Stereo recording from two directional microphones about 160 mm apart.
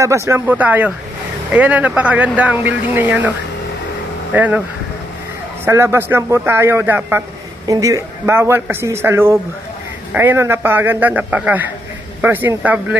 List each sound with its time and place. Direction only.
0.0 s a man's voice: 20° right (ahead or behind)
5.7 s a man's voice: 15° right (ahead or behind)